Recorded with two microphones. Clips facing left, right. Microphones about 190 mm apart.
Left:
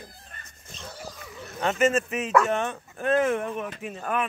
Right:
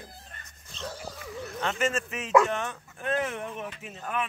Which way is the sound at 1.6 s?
20° left (ahead or behind).